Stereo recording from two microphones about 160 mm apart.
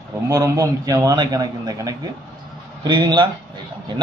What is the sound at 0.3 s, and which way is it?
A man's voice, 20° right (ahead or behind).